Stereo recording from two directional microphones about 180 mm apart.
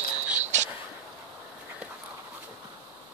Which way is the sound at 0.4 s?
40° right (ahead or behind).